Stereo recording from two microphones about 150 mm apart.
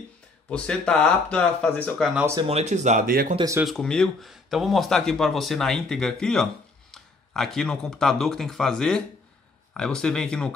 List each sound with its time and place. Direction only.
0.5 s speech: 5° left (ahead or behind)
2.4 s speech: 45° right (ahead or behind)
3.1 s speech: 75° right (ahead or behind)
3.6 s speech: 5° left (ahead or behind)